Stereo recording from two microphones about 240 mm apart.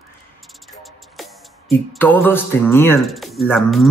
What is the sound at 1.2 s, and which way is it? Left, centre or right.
Speech, centre.